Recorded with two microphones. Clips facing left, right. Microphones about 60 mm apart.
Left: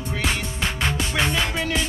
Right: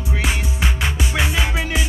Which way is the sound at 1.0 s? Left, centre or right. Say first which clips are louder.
Right 2 dB; centre.